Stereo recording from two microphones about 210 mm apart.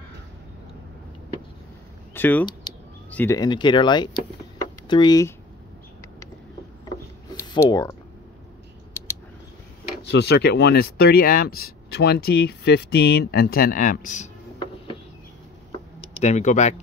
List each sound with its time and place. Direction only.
2.1 s speech: 10° left (ahead or behind)
7.2 s a sound: 20° left (ahead or behind)
10.1 s speech: 50° left (ahead or behind); by 14.3 s 35° left (ahead or behind)
16.2 s speech: 30° left (ahead or behind)